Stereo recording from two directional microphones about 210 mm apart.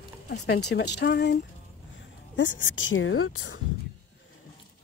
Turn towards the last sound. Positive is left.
turn(degrees=85)